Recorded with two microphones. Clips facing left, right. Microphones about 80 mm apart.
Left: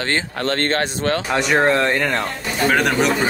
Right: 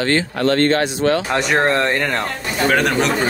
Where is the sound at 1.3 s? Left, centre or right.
Centre.